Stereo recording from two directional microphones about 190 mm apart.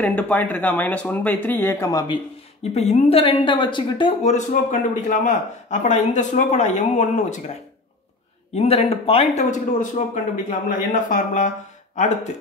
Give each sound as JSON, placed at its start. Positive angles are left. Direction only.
{"t": 0.0, "sound": "speech", "side_deg": 10}
{"t": 2.7, "sound": "speech", "side_deg": 35}
{"t": 8.5, "sound": "speech", "side_deg": 35}